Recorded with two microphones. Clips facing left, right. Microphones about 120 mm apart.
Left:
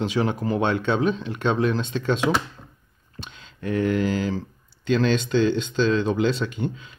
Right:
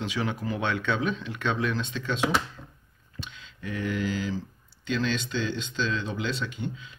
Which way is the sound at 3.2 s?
40° left (ahead or behind).